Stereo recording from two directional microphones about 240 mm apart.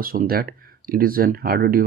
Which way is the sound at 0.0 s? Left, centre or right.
Right.